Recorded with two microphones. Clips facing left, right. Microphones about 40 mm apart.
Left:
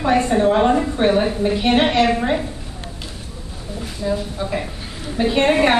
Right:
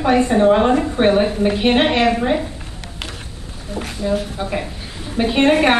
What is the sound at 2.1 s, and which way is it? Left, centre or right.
Speech, centre.